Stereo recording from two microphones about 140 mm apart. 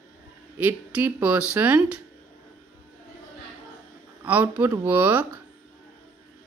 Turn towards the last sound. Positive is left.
turn(degrees=-15)  # may be behind; listen again after turning